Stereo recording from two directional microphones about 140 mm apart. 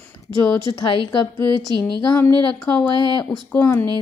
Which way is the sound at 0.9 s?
35° left (ahead or behind).